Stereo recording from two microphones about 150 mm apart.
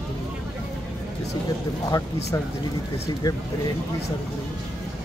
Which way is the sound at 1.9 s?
20° left (ahead or behind).